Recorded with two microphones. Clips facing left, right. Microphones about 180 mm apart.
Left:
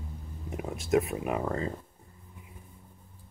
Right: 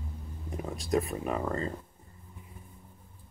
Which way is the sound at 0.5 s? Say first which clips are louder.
Left 3 dB; 10° left (ahead or behind).